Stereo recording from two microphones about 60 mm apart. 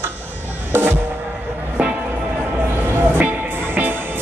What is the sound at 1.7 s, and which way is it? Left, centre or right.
Music, right.